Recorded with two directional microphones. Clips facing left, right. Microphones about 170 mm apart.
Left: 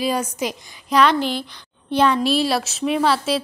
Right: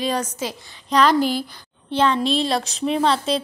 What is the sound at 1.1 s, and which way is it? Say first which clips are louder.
Speech: right 2 dB; 45° right (ahead or behind).